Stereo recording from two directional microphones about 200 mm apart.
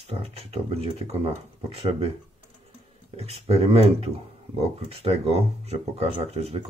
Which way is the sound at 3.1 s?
30° right (ahead or behind).